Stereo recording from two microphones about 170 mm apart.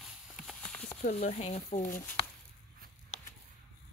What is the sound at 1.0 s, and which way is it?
Speech, 40° left (ahead or behind).